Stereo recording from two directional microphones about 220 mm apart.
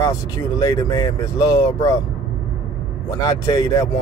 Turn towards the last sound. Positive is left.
turn(degrees=15)  # may be behind; listen again after turning